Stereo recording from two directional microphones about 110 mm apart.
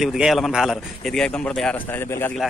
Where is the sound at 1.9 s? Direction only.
20° left (ahead or behind).